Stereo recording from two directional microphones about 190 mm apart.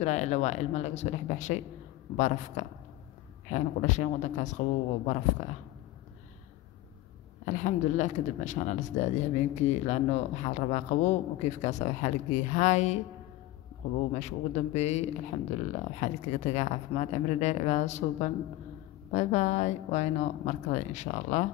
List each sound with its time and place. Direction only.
0.0 s speech: 35° left (ahead or behind)
7.4 s speech: 40° left (ahead or behind)
14.1 s speech: 35° left (ahead or behind)